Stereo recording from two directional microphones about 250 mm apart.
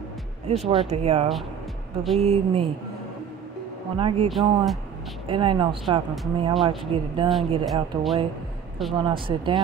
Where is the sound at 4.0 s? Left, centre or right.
Right.